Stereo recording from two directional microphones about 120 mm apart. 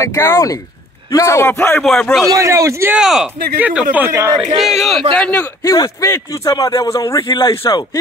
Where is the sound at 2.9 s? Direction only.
5° right (ahead or behind).